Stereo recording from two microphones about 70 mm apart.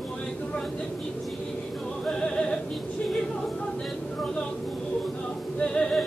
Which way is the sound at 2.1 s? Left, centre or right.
Centre.